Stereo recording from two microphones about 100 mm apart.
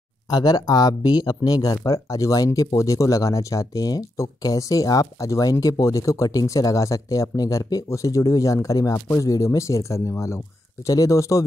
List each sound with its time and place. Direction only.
0.3 s speech: 45° left (ahead or behind)